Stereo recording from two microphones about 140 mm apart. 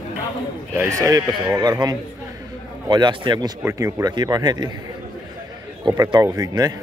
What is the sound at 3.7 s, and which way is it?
Speech, 20° right (ahead or behind).